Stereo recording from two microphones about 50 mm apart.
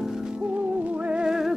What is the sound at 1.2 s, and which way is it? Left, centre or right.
Music, centre.